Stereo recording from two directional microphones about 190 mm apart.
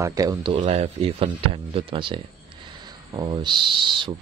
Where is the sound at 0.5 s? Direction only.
35° right (ahead or behind).